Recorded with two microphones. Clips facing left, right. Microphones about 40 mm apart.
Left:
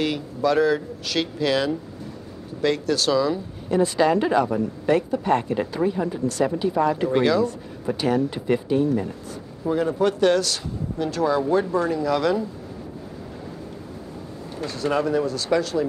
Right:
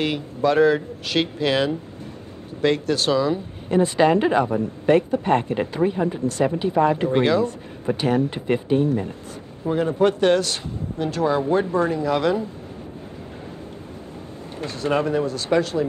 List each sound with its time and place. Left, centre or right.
0.0 s speech: right
14.6 s speech: right